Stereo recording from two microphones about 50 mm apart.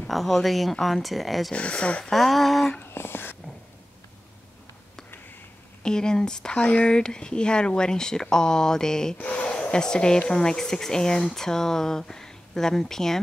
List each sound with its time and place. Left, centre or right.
0.1 s speech: centre
1.5 s speech: left
2.0 s speech: centre
2.8 s a sound: left
5.8 s speech: centre